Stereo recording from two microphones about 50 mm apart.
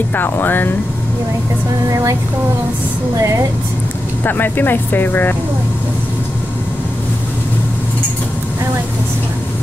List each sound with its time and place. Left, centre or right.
0.1 s speech: left
3.2 s speech: right
4.2 s speech: left